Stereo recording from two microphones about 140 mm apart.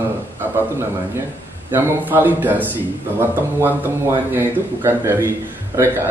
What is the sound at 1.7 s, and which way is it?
Speech, 15° right (ahead or behind).